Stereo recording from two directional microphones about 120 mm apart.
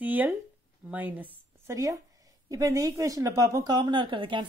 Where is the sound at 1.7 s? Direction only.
25° right (ahead or behind).